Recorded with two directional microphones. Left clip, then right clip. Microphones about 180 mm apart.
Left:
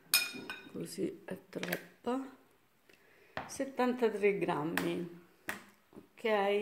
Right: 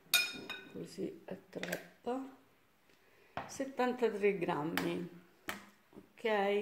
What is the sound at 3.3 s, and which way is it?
Speech, 15° left (ahead or behind).